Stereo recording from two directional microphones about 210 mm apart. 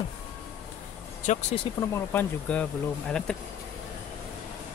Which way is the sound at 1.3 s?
35° left (ahead or behind).